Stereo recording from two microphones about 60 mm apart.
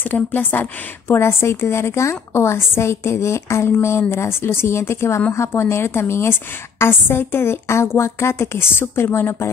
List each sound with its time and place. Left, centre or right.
0.1 s a woman's voice: left